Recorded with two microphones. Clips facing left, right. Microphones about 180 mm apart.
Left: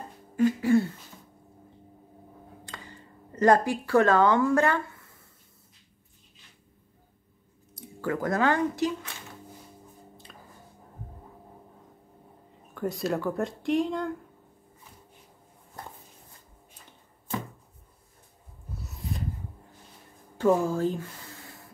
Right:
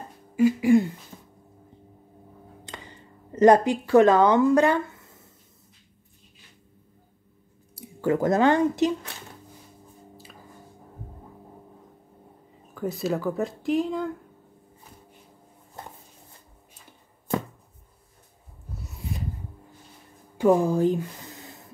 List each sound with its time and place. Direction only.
0.4 s speech: 10° right (ahead or behind)
2.6 s a sound: 20° right (ahead or behind)
8.0 s speech: 20° right (ahead or behind)
12.7 s speech: centre (ahead or behind)
18.7 s rub: centre (ahead or behind)
20.3 s a sound: 15° right (ahead or behind)